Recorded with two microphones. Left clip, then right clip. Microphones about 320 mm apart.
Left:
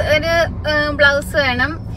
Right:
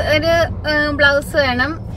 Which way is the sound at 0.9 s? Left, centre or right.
Centre.